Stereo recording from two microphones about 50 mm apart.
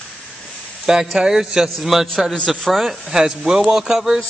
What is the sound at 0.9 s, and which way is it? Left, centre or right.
A man's voice, centre.